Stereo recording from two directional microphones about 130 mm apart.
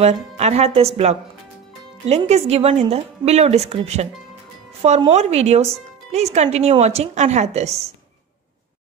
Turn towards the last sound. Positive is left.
turn(degrees=-60)  # may be behind; listen again after turning